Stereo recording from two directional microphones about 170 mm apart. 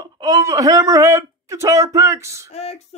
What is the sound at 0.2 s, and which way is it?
Speech, 20° right (ahead or behind).